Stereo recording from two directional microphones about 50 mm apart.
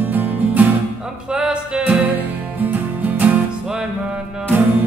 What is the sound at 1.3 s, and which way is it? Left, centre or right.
Music, centre.